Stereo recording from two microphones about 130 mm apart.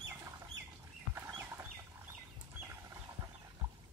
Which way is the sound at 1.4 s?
20° right (ahead or behind).